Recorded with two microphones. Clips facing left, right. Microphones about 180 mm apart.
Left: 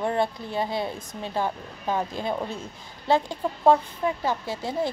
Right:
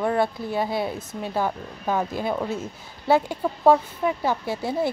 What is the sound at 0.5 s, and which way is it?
A woman's voice, 10° right (ahead or behind).